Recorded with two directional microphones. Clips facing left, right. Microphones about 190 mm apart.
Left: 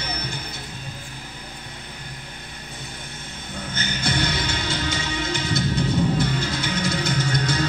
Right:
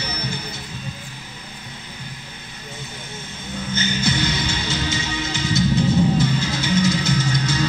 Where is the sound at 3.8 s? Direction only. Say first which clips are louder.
Right 3 dB; 55° left (ahead or behind).